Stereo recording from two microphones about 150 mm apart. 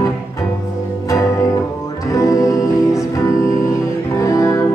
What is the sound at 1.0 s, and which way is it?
Music, 20° left (ahead or behind).